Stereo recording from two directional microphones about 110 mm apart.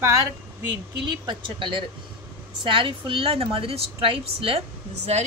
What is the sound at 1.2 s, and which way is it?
A woman's voice, 50° right (ahead or behind).